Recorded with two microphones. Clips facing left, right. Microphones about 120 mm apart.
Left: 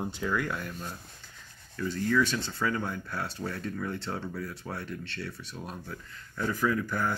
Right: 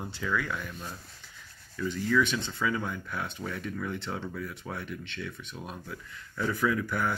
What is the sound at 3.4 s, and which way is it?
Speech, 35° left (ahead or behind).